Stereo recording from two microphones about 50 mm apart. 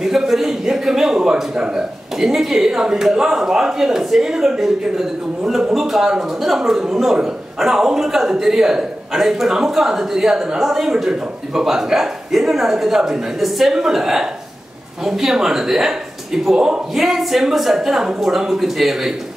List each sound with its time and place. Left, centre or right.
0.0 s a man's voice: centre
2.1 s a man's voice: centre
16.9 s speech: centre